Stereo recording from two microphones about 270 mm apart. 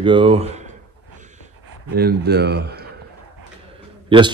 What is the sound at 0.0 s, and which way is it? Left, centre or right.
Speech, centre.